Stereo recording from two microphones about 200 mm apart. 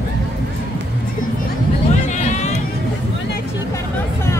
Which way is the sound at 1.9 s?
35° left (ahead or behind).